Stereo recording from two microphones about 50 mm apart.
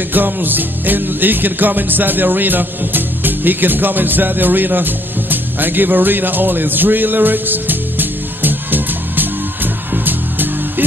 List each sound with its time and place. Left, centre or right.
0.1 s music: right